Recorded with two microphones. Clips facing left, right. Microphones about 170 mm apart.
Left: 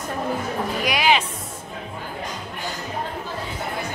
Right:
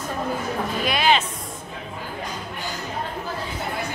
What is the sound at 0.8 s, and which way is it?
Speech, 15° left (ahead or behind).